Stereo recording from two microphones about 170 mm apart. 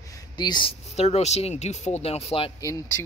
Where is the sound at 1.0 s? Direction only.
40° left (ahead or behind).